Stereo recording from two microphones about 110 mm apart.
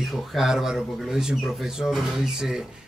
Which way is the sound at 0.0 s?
Centre (ahead or behind).